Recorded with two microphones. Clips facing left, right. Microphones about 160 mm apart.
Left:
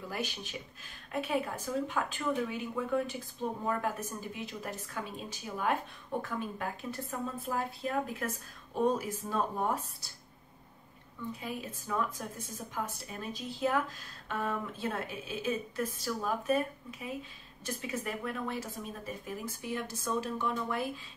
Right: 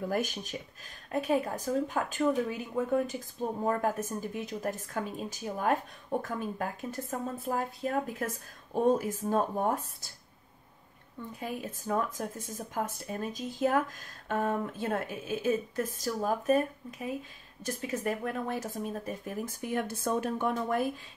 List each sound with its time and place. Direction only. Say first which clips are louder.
0.1 s a woman's voice: right 6 dB; 45° right (ahead or behind)
11.3 s speech: right 3 dB; 45° right (ahead or behind)